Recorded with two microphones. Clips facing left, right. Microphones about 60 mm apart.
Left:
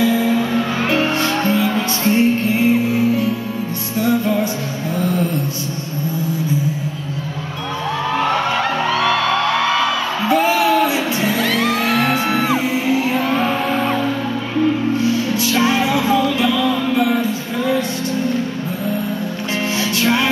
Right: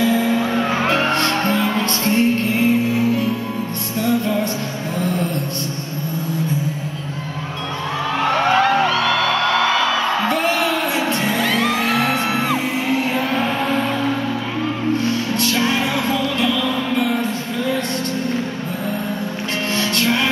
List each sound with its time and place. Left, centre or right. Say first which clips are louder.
0.0 s music: left 1 dB; centre
0.5 s music: even; centre
0.8 s music: even; centre
8.2 s a sound: right 1 dB; centre
8.5 s music: right 2 dB; centre
13.7 s music: left 2 dB; centre
15.0 s music: left 2 dB; centre
19.8 s music: left 2 dB; centre